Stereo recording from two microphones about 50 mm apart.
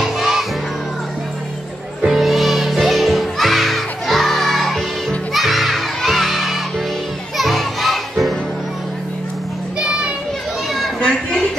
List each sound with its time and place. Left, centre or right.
0.0 s crowd: centre
2.0 s music: centre
5.3 s crowd: centre
7.3 s music: centre
9.8 s children playing: centre
11.0 s a sound: centre